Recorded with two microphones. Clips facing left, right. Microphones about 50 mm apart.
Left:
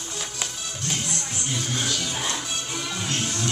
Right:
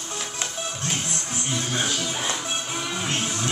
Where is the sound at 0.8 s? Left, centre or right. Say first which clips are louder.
Left 2 dB; right.